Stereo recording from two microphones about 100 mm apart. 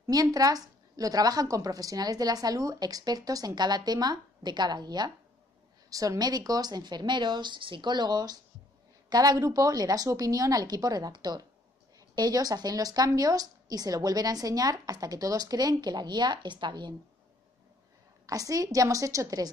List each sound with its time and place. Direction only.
0.0 s a woman's voice: 40° right (ahead or behind)
18.2 s a woman's voice: 35° right (ahead or behind)